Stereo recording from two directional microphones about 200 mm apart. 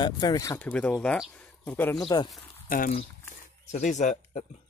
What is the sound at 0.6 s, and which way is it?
Speech, 5° left (ahead or behind).